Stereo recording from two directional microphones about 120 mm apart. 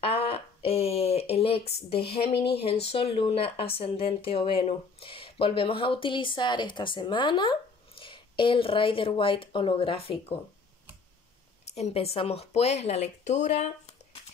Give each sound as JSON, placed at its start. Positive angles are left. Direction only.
{"t": 0.0, "sound": "speech", "side_deg": 50}
{"t": 11.7, "sound": "speech", "side_deg": 60}